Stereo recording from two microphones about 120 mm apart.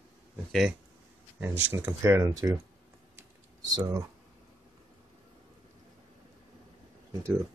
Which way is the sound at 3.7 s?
30° right (ahead or behind).